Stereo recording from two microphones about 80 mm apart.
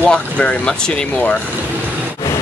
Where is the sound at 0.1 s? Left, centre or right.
Centre.